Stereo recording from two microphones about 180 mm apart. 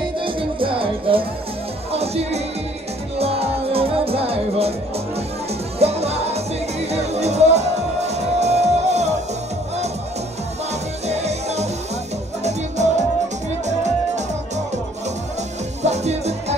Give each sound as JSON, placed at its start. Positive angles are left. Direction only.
{"t": 0.2, "sound": "music", "side_deg": -30}
{"t": 5.8, "sound": "music", "side_deg": -35}
{"t": 11.1, "sound": "music", "side_deg": -35}
{"t": 15.8, "sound": "music", "side_deg": -40}